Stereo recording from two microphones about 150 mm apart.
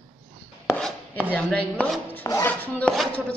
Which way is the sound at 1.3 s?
10° left (ahead or behind).